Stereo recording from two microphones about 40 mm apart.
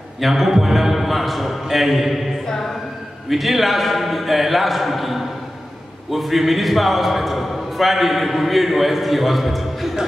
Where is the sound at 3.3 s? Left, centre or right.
Centre.